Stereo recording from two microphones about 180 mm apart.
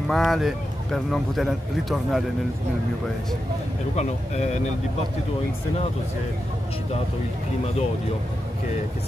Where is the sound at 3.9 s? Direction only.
40° left (ahead or behind).